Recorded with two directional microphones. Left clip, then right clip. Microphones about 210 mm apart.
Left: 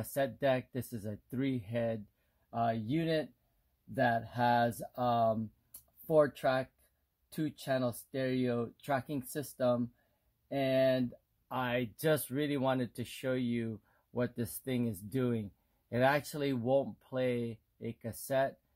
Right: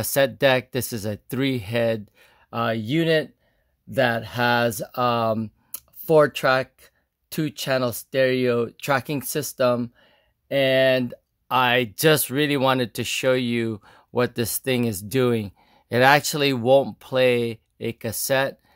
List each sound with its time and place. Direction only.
0.0 s speech: 55° right (ahead or behind)